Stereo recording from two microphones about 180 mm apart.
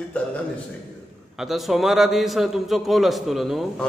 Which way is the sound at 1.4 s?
Centre (ahead or behind).